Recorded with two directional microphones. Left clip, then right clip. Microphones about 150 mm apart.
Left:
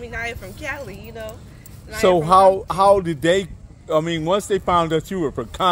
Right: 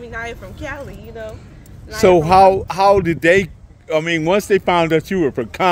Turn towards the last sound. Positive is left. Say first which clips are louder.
# right 6 dB
turn(degrees=-55)  # may be behind; listen again after turning